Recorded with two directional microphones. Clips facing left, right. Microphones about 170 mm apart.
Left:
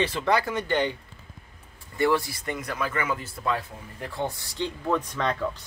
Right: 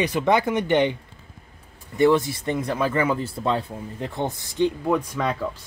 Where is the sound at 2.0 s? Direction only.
20° right (ahead or behind).